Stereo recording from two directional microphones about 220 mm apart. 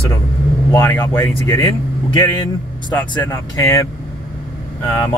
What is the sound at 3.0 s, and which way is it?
Speech, 15° left (ahead or behind).